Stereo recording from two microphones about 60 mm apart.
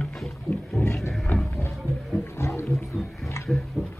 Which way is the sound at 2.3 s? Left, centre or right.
Left.